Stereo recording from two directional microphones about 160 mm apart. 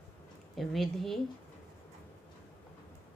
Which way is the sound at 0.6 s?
Centre (ahead or behind).